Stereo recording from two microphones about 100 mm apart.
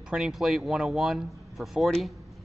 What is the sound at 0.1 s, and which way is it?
Speech, 5° right (ahead or behind).